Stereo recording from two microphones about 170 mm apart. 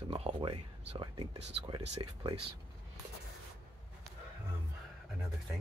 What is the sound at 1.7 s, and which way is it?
Speech, 25° right (ahead or behind).